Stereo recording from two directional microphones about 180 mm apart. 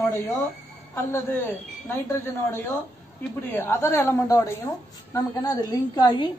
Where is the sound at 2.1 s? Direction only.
15° left (ahead or behind).